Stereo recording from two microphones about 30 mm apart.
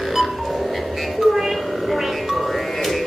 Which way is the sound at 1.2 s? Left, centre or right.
Centre.